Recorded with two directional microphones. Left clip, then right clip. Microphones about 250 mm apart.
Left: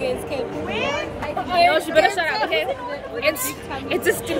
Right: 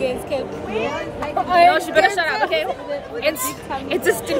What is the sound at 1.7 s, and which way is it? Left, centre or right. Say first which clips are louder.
Speech: right 1 dB; centre.